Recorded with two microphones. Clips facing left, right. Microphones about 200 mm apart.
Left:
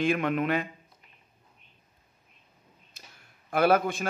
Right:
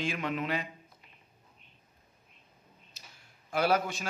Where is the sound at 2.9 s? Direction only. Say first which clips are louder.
Left 3 dB; 55° left (ahead or behind).